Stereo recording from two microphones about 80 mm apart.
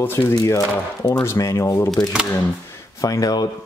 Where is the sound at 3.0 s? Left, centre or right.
Left.